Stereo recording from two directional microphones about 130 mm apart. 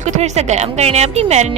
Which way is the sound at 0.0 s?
60° right (ahead or behind).